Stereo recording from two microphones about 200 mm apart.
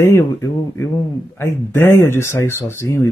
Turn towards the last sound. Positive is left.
turn(degrees=15)  # may be behind; listen again after turning